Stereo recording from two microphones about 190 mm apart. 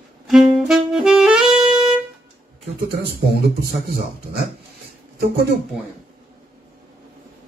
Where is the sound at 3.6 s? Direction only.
55° right (ahead or behind).